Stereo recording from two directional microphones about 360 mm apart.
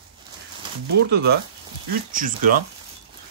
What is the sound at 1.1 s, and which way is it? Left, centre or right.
Speech, right.